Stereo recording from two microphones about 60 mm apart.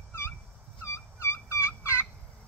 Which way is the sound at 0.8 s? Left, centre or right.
Left.